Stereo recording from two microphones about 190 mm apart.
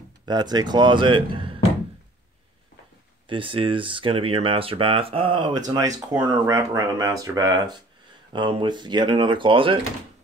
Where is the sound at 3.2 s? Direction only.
25° right (ahead or behind).